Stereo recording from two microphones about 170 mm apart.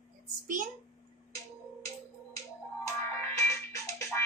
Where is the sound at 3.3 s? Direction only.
20° left (ahead or behind).